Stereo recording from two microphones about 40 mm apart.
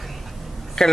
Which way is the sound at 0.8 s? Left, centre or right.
Centre.